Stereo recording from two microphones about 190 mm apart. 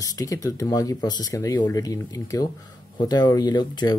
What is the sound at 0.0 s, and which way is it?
Speech, 20° left (ahead or behind).